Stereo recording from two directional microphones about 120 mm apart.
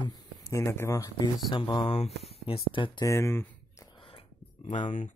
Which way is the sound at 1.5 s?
40° left (ahead or behind).